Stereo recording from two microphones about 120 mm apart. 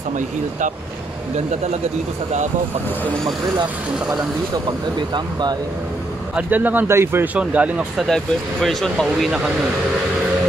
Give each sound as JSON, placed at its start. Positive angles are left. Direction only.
{"t": 4.6, "sound": "speech", "side_deg": -40}
{"t": 6.3, "sound": "speech", "side_deg": -15}
{"t": 8.1, "sound": "speech", "side_deg": 5}